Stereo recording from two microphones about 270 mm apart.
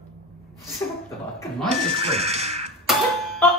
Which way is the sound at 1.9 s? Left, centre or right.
Right.